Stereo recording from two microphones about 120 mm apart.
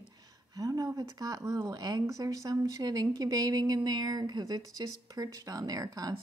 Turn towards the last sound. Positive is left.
turn(degrees=-30)  # may be behind; listen again after turning